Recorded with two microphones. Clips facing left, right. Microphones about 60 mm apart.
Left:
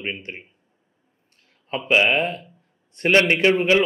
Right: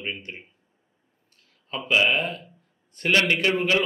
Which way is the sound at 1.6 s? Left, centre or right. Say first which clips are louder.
Left 3 dB; left.